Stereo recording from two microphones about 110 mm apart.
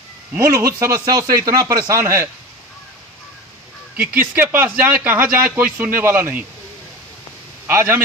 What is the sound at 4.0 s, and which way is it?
Speech, 15° right (ahead or behind).